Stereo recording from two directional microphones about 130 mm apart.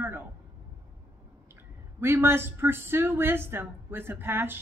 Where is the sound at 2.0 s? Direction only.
15° right (ahead or behind).